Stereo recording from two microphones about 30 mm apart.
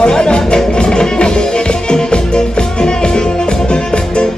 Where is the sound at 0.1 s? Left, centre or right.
Left.